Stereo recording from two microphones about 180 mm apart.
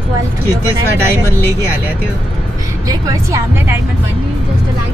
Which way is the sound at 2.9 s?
15° right (ahead or behind).